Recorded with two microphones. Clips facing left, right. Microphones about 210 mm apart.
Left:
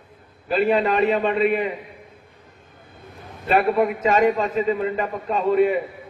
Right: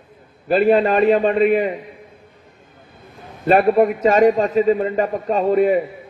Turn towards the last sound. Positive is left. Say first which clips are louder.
# right 3 dB
turn(degrees=-40)  # may be behind; listen again after turning